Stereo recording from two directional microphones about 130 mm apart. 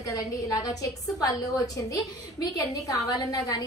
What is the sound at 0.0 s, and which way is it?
A woman's voice, 25° left (ahead or behind).